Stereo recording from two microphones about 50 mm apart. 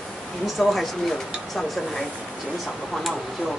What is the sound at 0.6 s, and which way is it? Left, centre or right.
Speech, centre.